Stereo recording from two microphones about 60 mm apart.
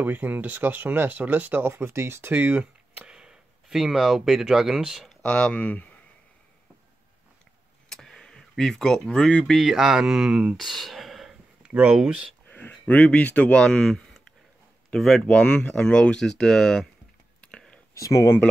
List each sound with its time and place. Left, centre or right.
0.0 s speech: right
2.3 s speech: right
3.1 s speech: centre
5.2 s speech: centre
7.9 s a sound: centre
9.5 s speech: centre
10.6 s a sound: centre
11.6 s speech: centre
12.4 s speech: left
13.6 s speech: centre
17.4 s whispering: centre
17.9 s speech: left